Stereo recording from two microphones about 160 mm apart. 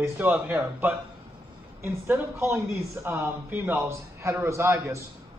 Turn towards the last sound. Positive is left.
turn(degrees=-20)  # may be behind; listen again after turning